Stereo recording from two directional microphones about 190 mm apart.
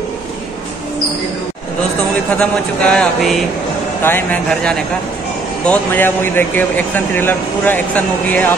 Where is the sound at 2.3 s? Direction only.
5° left (ahead or behind).